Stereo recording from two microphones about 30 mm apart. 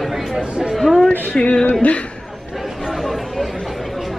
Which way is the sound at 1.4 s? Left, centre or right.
Left.